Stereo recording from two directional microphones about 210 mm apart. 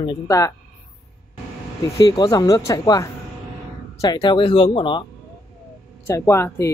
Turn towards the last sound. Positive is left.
turn(degrees=10)  # may be behind; listen again after turning